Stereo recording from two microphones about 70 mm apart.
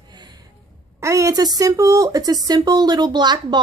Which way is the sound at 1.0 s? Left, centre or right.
Right.